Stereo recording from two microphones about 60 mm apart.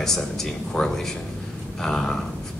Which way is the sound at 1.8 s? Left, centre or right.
Centre.